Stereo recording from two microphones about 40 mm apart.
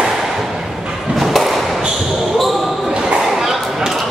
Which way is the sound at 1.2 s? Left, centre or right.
Centre.